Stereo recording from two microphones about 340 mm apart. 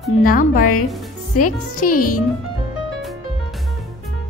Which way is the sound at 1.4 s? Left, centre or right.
Left.